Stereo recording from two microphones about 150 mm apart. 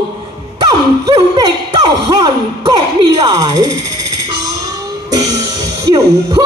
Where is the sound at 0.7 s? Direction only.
25° right (ahead or behind).